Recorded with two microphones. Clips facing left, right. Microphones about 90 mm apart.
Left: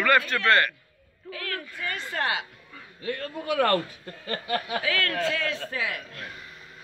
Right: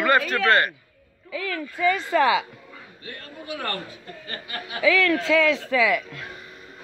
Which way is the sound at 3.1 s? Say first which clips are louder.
Left 6 dB; 80° left.